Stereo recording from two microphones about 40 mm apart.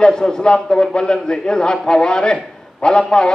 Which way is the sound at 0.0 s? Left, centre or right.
Centre.